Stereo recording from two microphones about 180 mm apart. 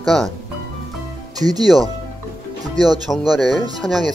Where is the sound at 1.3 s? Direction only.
20° right (ahead or behind).